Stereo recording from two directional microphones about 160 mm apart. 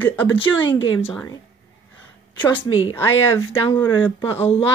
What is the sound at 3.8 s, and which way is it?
Speech, 10° left (ahead or behind).